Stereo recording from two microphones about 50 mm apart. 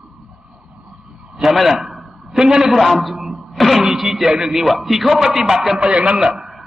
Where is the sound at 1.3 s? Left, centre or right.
Centre.